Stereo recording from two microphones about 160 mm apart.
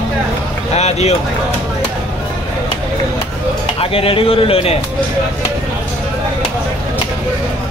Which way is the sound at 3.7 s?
35° left (ahead or behind).